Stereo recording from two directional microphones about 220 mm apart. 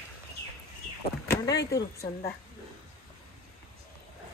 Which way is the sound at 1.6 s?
50° left (ahead or behind).